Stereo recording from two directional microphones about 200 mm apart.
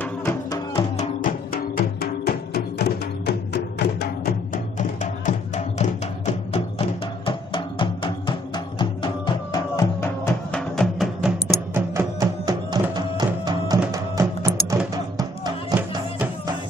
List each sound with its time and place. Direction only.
0.0 s music: 10° left (ahead or behind)
0.9 s music: 45° left (ahead or behind)
4.7 s music: 35° left (ahead or behind); by 16.0 s 20° right (ahead or behind)